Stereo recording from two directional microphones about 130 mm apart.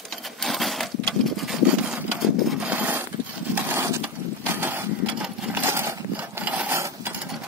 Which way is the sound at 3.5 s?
15° right (ahead or behind).